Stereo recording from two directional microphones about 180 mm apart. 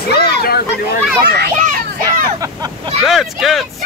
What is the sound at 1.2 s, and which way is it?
A child's voice, 55° right (ahead or behind).